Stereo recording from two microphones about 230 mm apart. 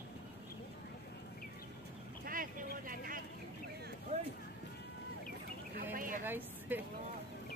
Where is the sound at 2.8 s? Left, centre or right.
Right.